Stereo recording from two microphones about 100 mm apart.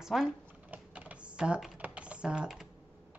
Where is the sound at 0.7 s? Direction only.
15° right (ahead or behind).